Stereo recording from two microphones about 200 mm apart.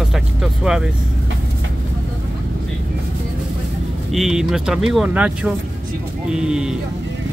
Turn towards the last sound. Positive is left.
turn(degrees=-5)  # may be behind; listen again after turning